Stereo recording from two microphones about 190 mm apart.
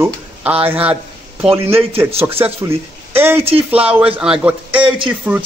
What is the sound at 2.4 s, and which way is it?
Speech, 10° right (ahead or behind).